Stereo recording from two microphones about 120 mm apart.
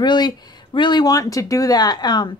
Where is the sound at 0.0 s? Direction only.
40° left (ahead or behind).